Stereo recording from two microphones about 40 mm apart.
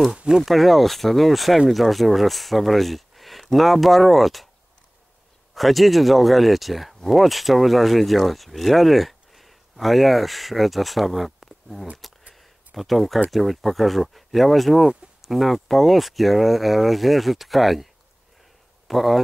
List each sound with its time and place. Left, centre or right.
0.4 s speech: centre
5.5 s speech: centre
12.4 s a sound: centre
13.3 s speech: centre
18.9 s speech: centre